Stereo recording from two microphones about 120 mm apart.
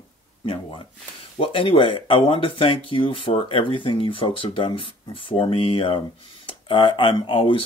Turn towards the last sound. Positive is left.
turn(degrees=45)  # may be behind; listen again after turning